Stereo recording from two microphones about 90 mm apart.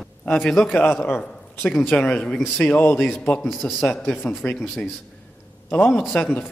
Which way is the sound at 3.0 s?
Centre (ahead or behind).